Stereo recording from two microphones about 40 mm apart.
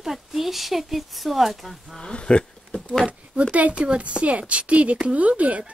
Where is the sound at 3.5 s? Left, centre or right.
Right.